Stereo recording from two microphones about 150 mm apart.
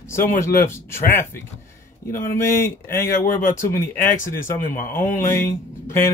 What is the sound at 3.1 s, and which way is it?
Speech, 65° left (ahead or behind).